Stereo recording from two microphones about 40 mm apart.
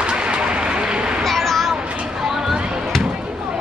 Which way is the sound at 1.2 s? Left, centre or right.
Centre.